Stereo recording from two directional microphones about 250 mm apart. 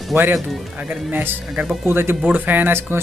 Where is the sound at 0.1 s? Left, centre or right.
Centre.